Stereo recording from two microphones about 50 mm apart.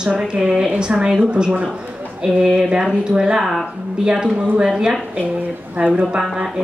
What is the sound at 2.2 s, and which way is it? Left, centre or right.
A woman's voice, centre.